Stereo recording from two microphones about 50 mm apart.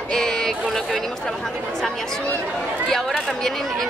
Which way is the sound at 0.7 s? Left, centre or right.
Centre.